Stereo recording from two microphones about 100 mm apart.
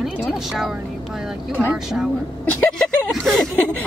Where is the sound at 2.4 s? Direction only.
15° left (ahead or behind).